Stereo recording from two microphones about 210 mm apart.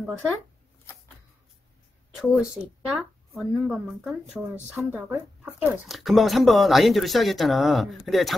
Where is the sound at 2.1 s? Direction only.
Centre (ahead or behind).